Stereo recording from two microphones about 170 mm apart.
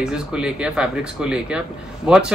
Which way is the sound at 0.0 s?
5° right (ahead or behind).